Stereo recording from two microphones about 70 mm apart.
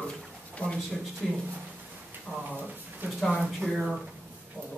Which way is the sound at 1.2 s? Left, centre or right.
Centre.